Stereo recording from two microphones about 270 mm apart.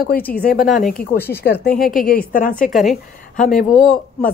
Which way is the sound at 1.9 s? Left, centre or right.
Left.